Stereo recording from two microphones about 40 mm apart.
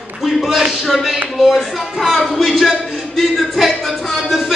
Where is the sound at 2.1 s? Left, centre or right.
Centre.